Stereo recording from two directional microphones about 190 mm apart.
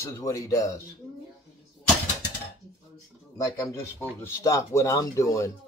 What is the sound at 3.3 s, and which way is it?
Speech, 15° left (ahead or behind).